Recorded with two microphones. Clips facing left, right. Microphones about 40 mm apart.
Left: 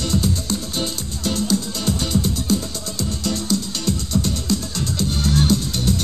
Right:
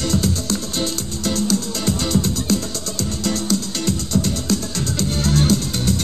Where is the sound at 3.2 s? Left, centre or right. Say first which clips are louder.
Right 2 dB; right.